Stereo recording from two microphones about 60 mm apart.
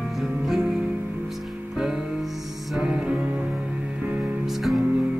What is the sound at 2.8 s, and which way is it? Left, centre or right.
Music, centre.